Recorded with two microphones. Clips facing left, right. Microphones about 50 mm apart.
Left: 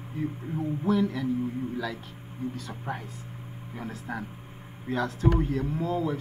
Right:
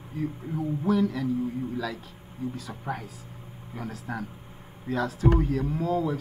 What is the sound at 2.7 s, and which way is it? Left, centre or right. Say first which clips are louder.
Speech: right 1 dB; centre.